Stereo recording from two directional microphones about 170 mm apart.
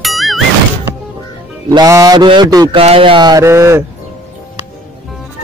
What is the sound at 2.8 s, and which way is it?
A man's voice, 35° right (ahead or behind).